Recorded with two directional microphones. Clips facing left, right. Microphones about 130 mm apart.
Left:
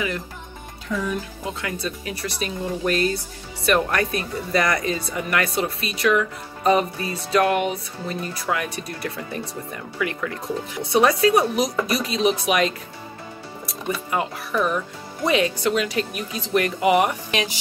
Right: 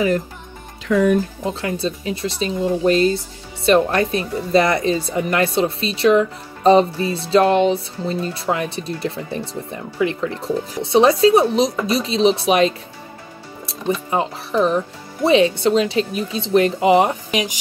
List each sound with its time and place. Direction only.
0.8 s speech: 90° right
1.4 s speech: 30° right (ahead or behind)
14.1 s speech: 25° right (ahead or behind)
17.3 s speech: 15° right (ahead or behind)